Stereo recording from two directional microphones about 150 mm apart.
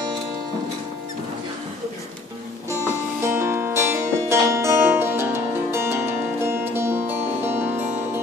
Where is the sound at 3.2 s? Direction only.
15° right (ahead or behind).